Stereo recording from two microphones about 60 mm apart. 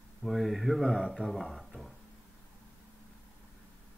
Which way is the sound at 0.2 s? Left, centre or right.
Centre.